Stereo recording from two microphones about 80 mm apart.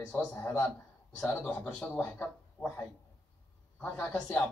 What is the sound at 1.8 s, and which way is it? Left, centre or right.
Speech, left.